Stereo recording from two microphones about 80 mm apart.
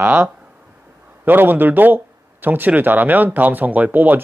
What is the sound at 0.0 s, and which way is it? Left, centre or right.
Speech, right.